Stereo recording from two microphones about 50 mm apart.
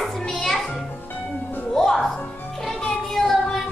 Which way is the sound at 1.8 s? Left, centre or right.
Centre.